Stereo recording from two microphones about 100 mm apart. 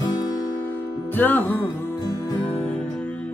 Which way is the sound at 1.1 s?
15° left (ahead or behind).